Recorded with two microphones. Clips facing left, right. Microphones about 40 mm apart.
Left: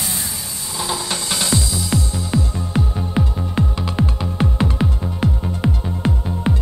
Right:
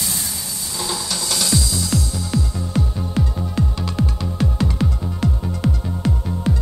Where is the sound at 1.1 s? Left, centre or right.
Left.